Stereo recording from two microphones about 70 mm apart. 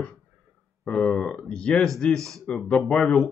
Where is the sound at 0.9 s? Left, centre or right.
Centre.